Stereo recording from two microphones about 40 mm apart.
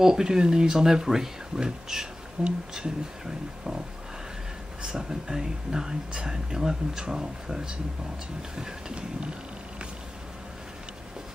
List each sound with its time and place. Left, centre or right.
0.0 s speech: centre
2.4 s speech: right
4.8 s speech: centre